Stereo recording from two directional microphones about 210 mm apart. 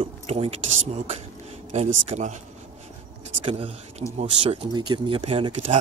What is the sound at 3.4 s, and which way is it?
Speech, 25° right (ahead or behind).